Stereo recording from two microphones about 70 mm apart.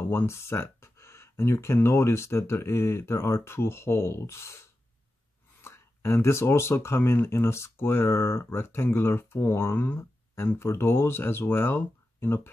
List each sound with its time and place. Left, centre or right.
0.1 s speech: left